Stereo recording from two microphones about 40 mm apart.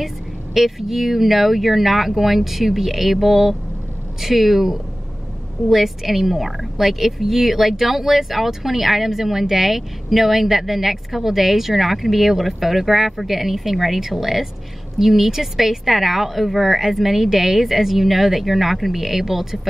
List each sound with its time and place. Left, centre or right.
0.6 s a woman's voice: centre